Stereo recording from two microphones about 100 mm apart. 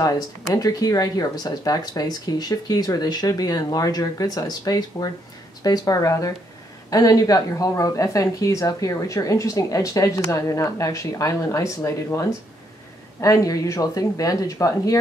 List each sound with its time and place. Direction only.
0.6 s a woman's voice: 35° left (ahead or behind)